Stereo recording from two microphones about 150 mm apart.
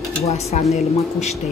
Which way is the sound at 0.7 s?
45° left (ahead or behind).